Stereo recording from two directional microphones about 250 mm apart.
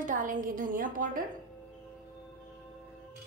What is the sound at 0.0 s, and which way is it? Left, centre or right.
A woman's voice, right.